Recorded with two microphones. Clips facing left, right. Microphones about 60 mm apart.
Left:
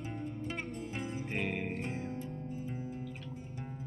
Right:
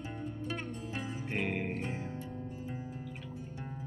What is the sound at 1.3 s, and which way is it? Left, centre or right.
Speech, centre.